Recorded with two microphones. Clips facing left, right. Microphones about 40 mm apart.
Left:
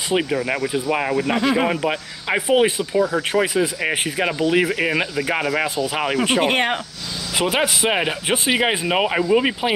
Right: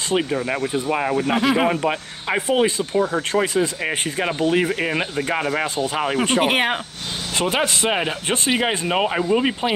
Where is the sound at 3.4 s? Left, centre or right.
Centre.